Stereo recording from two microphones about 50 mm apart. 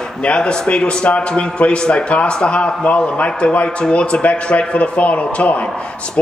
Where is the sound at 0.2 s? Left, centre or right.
Centre.